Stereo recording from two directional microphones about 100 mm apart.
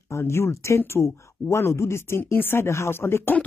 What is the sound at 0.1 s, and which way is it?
Speech, 25° left (ahead or behind).